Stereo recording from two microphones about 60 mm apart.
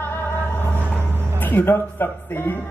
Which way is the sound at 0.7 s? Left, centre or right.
Left.